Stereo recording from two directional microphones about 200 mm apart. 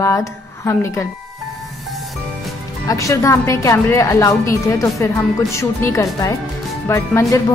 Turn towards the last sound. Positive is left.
turn(degrees=15)  # may be behind; listen again after turning